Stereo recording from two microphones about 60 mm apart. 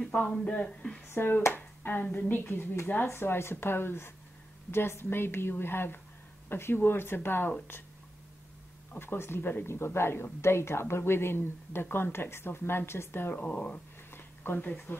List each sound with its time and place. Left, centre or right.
0.2 s speech: left
1.0 s speech: left
1.5 s a sound: left
2.0 s a woman's voice: left
8.9 s a woman's voice: left
9.7 s a woman's voice: left
13.3 s speech: left
14.1 s a sound: left